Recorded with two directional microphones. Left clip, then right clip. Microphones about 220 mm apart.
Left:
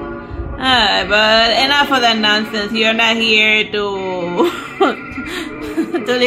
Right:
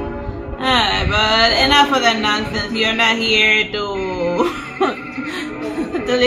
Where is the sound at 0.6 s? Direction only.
50° left (ahead or behind).